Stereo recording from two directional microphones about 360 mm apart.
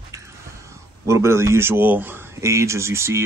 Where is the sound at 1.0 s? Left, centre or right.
Centre.